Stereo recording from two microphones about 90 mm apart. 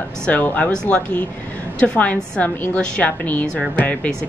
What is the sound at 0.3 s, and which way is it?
A woman's voice, 20° left (ahead or behind).